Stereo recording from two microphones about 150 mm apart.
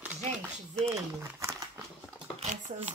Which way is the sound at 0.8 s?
20° right (ahead or behind).